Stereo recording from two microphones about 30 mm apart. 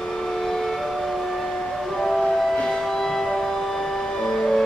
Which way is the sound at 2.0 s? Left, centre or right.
Centre.